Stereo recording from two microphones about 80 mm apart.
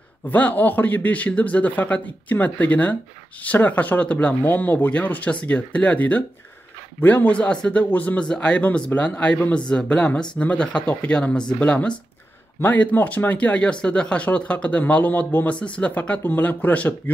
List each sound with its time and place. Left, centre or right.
0.3 s speech: left